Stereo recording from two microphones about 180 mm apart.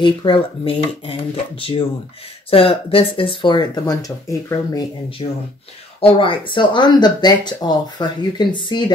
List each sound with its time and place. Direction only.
0.0 s speech: 25° left (ahead or behind)
5.2 s speech: 30° left (ahead or behind)